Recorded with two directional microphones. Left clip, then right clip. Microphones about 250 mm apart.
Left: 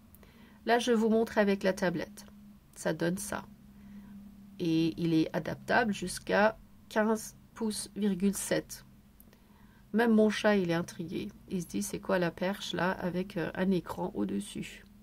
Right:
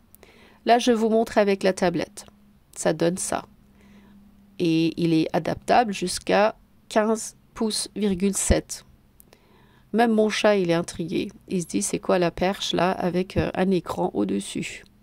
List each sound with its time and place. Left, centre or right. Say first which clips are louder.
0.2 s speech: right 10 dB; right
4.6 s speech: right 8 dB; right
9.8 s speech: right 6 dB; right